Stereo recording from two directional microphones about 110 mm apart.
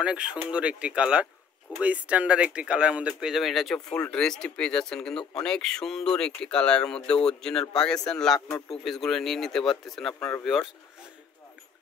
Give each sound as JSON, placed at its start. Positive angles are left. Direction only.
{"t": 0.0, "sound": "speech", "side_deg": -10}